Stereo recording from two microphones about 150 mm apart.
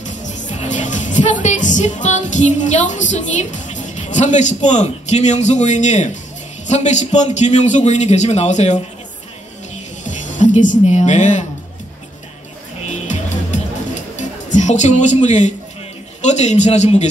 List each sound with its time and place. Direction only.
0.0 s a man's voice: 55° left (ahead or behind)
10.0 s speech: 55° left (ahead or behind)
13.0 s music: 55° left (ahead or behind)
14.1 s a man's voice: 50° left (ahead or behind)